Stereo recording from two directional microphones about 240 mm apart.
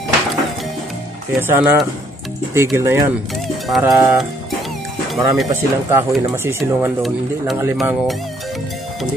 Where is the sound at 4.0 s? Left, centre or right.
Centre.